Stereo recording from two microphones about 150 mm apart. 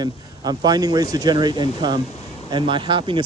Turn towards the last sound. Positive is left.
turn(degrees=-35)  # may be behind; listen again after turning